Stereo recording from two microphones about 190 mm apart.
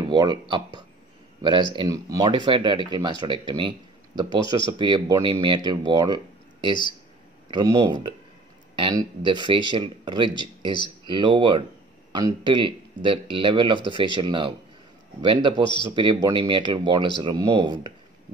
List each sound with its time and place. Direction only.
0.1 s speech: 25° right (ahead or behind)